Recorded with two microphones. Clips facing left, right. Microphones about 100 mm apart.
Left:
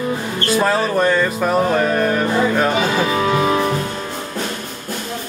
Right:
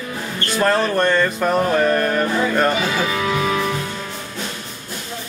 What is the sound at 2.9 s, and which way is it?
Music, 35° left (ahead or behind).